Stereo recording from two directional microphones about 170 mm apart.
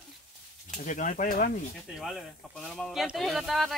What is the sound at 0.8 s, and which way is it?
Speech, 50° left (ahead or behind).